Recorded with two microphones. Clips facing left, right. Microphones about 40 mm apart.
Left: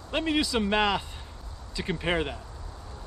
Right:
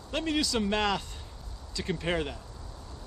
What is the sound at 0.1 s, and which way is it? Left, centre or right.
Speech, centre.